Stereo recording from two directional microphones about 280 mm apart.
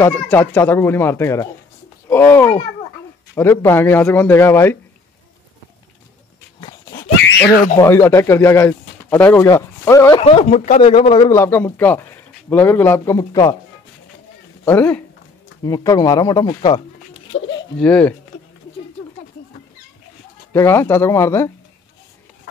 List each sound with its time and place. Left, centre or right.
0.0 s speech: centre
6.9 s a sound: left
7.8 s speech: centre
14.6 s speech: centre
17.7 s speech: centre
20.5 s speech: centre